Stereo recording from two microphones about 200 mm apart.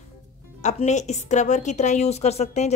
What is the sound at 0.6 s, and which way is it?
A woman's voice, 35° left (ahead or behind).